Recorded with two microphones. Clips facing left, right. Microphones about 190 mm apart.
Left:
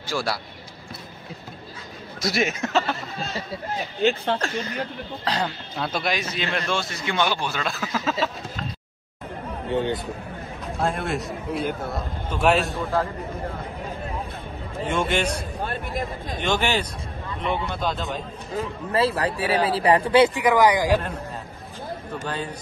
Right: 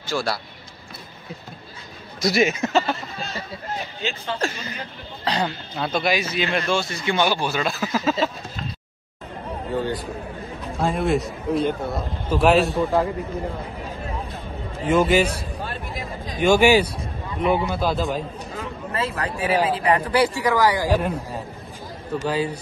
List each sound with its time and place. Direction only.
0.1 s speech: 10° left (ahead or behind)
2.2 s a man's voice: centre (ahead or behind)
4.0 s speech: 60° left (ahead or behind)
5.2 s a man's voice: centre (ahead or behind)
9.8 s a man's voice: 20° left (ahead or behind)
10.8 s a man's voice: centre (ahead or behind)
14.9 s a man's voice: 5° right (ahead or behind)
15.3 s a sound: 50° left (ahead or behind)
16.3 s a man's voice: 10° right (ahead or behind)
18.5 s speech: 35° left (ahead or behind); by 21.0 s 15° left (ahead or behind)
22.3 s a man's voice: 5° right (ahead or behind)